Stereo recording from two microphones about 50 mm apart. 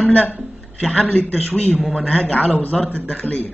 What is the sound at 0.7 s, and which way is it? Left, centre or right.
Speech, centre.